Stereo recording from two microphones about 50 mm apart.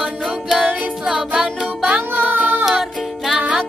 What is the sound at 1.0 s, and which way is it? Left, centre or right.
Music, centre.